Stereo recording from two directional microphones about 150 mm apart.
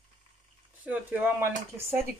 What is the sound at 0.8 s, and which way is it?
Speech, 10° right (ahead or behind).